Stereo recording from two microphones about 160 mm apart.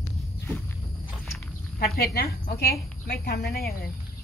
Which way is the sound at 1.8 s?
70° left (ahead or behind).